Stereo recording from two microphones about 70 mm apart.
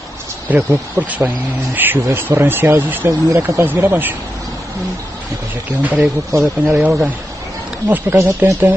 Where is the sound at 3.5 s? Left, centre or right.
Right.